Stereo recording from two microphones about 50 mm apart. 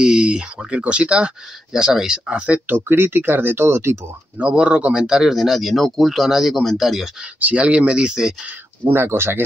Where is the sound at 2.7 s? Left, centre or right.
Right.